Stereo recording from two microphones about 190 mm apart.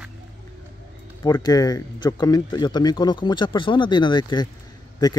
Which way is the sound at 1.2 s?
20° left (ahead or behind).